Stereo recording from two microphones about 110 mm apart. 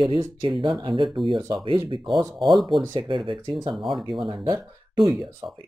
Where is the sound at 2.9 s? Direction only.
50° right (ahead or behind).